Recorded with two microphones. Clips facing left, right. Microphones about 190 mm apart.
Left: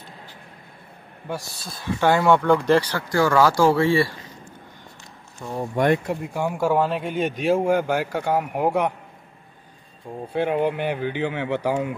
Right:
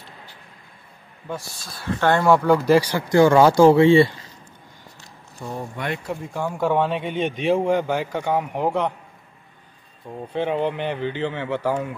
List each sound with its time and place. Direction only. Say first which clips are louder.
1.5 s speech: left 2 dB; 35° left (ahead or behind)
1.8 s speech: even; 10° left (ahead or behind)
2.2 s speech: right 3 dB; 5° right (ahead or behind)
3.1 s speech: right 5 dB; 25° right (ahead or behind)
6.0 s speech: left 2 dB; 10° left (ahead or behind)
10.3 s speech: left 1 dB; 10° left (ahead or behind)